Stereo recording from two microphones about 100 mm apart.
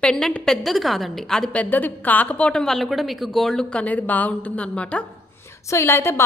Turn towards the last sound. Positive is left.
turn(degrees=25)  # may be behind; listen again after turning